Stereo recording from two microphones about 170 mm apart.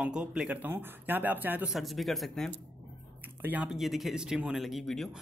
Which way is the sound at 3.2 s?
10° right (ahead or behind).